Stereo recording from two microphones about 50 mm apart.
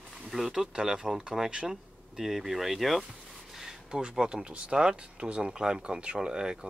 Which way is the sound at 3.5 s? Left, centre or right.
Centre.